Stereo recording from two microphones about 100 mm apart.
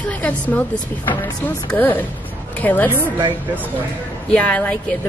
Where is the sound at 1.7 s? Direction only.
20° left (ahead or behind).